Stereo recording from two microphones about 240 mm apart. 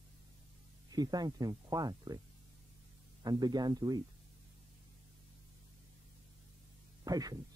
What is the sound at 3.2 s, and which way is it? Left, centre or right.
Speech, centre.